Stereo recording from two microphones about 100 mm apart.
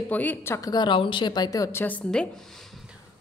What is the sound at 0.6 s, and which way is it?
Speech, 45° left (ahead or behind).